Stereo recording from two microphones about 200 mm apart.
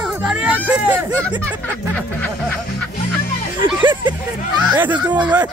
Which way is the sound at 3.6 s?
25° right (ahead or behind).